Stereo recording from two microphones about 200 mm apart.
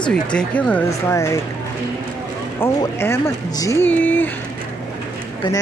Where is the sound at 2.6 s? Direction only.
10° left (ahead or behind).